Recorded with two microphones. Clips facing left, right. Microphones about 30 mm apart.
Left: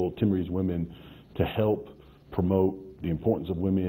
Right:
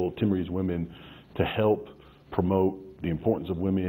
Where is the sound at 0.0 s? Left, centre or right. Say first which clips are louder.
Even; centre.